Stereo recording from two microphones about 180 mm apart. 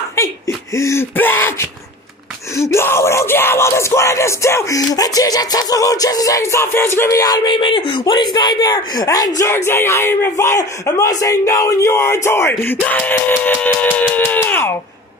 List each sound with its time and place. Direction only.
0.7 s speech: 15° left (ahead or behind)
2.5 s yell: 15° left (ahead or behind)
9.4 s speech: 15° left (ahead or behind)